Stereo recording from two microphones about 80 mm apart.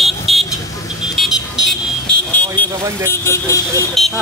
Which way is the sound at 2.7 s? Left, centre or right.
Right.